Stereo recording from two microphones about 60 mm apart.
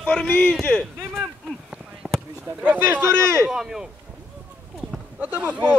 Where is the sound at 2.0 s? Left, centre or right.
Centre.